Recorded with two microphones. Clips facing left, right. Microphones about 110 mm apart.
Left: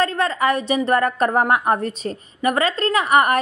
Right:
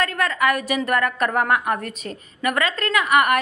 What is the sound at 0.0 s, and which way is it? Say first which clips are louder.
A woman's voice: left 2 dB; 30° left (ahead or behind).